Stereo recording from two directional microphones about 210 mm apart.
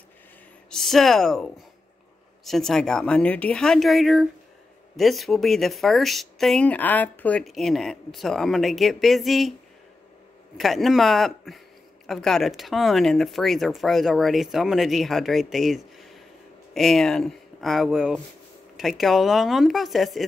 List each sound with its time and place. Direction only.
0.7 s speech: centre (ahead or behind)
10.6 s speech: centre (ahead or behind)